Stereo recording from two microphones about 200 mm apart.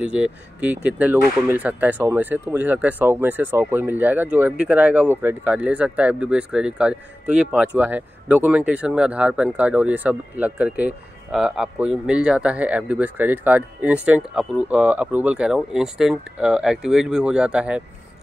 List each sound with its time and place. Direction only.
0.0 s speech: 5° right (ahead or behind)